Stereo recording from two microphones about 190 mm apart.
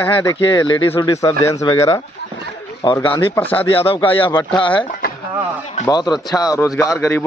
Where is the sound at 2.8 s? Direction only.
25° left (ahead or behind).